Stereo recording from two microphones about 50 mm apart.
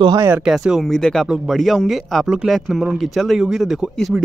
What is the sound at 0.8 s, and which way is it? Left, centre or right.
Speech, centre.